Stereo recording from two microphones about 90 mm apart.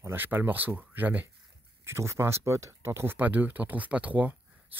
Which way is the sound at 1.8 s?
30° right (ahead or behind).